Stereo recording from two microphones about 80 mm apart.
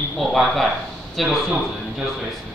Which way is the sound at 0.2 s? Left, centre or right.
Centre.